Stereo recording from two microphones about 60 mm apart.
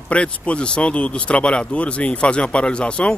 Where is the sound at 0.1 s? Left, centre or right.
Centre.